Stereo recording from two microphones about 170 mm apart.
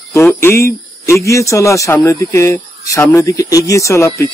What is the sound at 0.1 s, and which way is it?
Speech, 15° left (ahead or behind).